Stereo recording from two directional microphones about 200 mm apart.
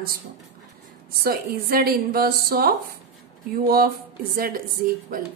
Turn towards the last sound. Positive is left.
turn(degrees=-45)  # may be behind; listen again after turning